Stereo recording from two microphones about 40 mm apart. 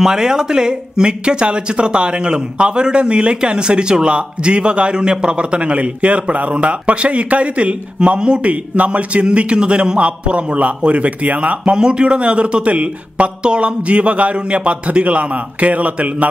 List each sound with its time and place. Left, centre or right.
0.0 s speech: centre; by 11.7 s right
11.7 s a man's voice: right